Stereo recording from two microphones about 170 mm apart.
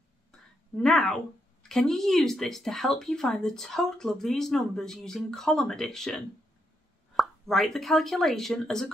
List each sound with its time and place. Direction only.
0.7 s speech: 5° left (ahead or behind)